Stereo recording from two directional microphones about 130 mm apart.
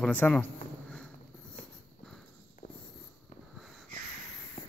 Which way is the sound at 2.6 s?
50° left (ahead or behind).